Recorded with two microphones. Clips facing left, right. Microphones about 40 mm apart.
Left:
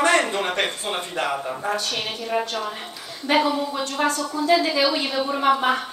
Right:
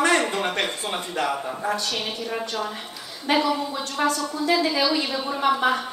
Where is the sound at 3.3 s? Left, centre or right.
Left.